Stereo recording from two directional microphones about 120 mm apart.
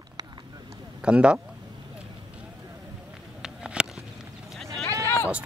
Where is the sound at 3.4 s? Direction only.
5° right (ahead or behind).